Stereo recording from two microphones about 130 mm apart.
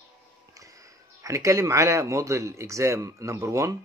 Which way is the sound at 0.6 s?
25° right (ahead or behind).